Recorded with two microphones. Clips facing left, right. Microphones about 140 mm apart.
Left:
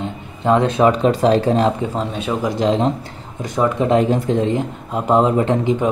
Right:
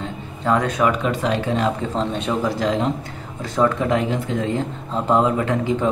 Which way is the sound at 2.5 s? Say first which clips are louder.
Left 4 dB; 25° left (ahead or behind).